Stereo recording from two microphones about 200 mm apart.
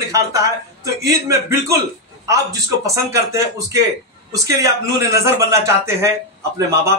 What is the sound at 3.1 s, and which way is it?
A man's voice, 15° right (ahead or behind).